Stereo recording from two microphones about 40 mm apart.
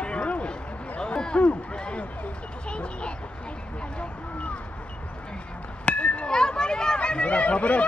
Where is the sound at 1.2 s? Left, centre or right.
Left.